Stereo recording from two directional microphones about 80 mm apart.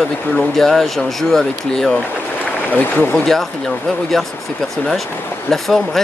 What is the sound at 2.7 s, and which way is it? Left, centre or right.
Speech, left.